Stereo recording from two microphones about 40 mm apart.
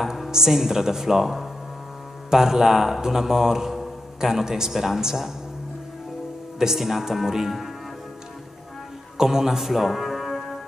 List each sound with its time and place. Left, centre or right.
0.0 s speech: centre
6.6 s speech: centre
9.2 s a man's voice: centre